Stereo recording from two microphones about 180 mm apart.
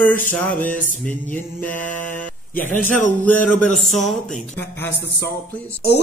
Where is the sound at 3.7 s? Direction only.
40° left (ahead or behind).